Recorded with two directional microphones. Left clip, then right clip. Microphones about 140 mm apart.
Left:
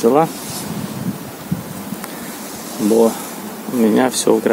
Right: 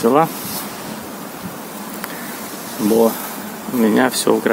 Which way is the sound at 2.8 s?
20° right (ahead or behind).